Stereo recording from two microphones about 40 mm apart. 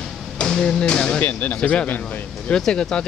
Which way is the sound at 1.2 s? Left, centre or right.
Left.